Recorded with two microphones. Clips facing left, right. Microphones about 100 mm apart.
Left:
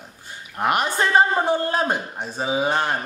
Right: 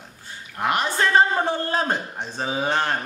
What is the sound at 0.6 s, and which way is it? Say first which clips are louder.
A man's voice: left 1 dB; 15° left (ahead or behind).